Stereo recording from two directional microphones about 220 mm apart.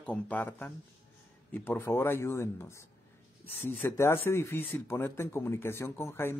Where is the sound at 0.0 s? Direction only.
5° left (ahead or behind).